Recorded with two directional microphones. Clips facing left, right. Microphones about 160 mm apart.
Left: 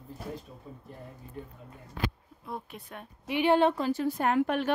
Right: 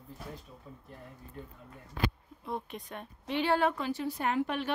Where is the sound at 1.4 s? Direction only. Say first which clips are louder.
Left 3 dB; 15° left (ahead or behind).